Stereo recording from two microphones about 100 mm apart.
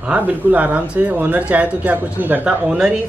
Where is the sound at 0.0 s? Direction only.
15° right (ahead or behind).